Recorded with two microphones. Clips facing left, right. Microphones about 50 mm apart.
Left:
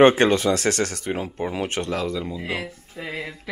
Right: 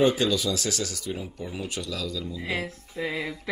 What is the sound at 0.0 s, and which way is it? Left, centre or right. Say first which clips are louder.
Speech: left 7 dB; left.